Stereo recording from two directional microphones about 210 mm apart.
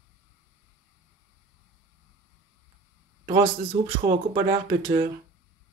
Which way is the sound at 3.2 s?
25° right (ahead or behind).